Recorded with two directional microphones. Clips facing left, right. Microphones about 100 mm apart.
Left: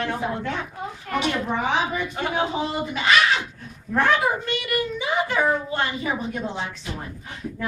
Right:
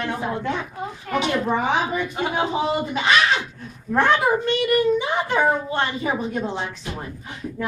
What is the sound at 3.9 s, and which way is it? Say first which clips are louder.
A child's voice: right 2 dB; 30° right (ahead or behind).